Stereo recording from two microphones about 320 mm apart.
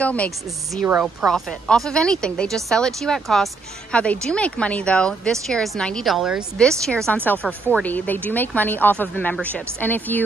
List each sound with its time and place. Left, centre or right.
0.0 s speech: centre